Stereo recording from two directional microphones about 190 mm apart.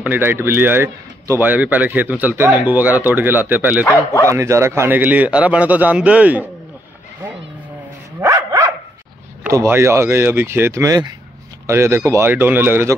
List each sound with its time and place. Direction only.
0.0 s a man's voice: 10° right (ahead or behind)
3.8 s speech: 15° left (ahead or behind)
4.3 s a man's voice: 15° right (ahead or behind)
8.2 s dog: 15° right (ahead or behind)
9.4 s a man's voice: 15° right (ahead or behind)